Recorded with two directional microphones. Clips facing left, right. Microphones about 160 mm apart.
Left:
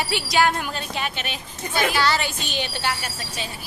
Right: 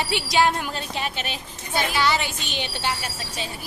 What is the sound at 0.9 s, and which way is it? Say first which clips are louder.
Speech: even; 30° right (ahead or behind).